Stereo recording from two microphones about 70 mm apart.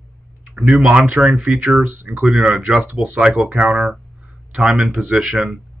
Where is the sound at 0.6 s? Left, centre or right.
Centre.